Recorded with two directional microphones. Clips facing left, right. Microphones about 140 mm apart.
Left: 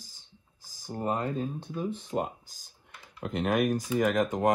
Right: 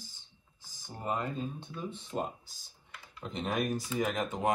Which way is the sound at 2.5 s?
45° left (ahead or behind).